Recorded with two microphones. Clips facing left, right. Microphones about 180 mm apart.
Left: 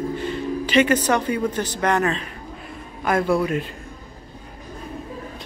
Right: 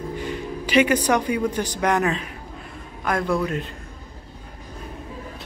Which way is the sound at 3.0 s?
5° left (ahead or behind).